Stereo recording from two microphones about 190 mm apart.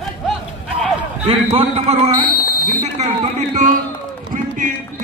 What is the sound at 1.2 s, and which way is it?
Speech, 30° right (ahead or behind).